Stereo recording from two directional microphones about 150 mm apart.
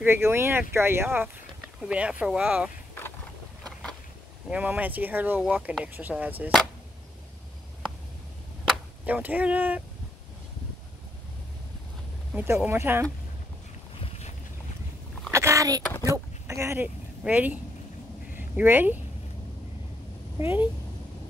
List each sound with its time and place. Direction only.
0.0 s speech: 15° right (ahead or behind)
4.5 s speech: 10° right (ahead or behind)
9.0 s speech: 10° right (ahead or behind)
12.6 s speech: 15° right (ahead or behind)
14.0 s boat: 45° left (ahead or behind)
15.3 s a sound: 20° right (ahead or behind)
20.3 s speech: 15° right (ahead or behind)